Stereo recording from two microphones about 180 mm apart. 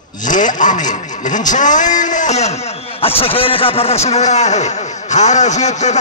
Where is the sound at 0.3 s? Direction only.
45° left (ahead or behind).